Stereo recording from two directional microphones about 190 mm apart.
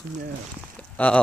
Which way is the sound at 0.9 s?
5° left (ahead or behind).